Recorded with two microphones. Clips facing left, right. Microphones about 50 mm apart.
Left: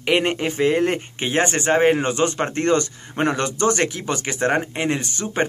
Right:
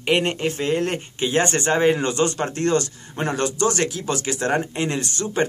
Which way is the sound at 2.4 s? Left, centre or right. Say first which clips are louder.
Left 2 dB; left.